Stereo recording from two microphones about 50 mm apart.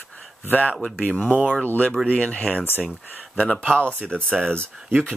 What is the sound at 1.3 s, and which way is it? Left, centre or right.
Speech, right.